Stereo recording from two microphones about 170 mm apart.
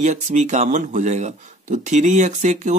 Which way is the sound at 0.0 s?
45° right (ahead or behind).